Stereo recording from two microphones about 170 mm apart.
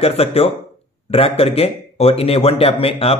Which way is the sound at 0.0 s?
35° left (ahead or behind).